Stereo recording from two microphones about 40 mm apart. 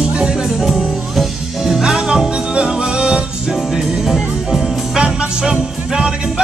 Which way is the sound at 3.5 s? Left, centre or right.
Centre.